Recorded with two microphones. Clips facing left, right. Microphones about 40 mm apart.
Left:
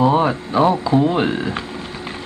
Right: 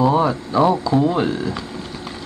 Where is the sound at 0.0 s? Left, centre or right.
Left.